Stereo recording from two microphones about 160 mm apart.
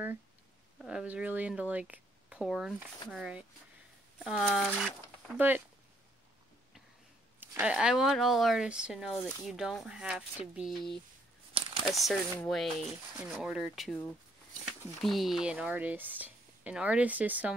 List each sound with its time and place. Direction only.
0.7 s speech: 5° right (ahead or behind)
7.3 s speech: 10° right (ahead or behind)
11.5 s crumpling: 35° right (ahead or behind)
11.8 s speech: centre (ahead or behind)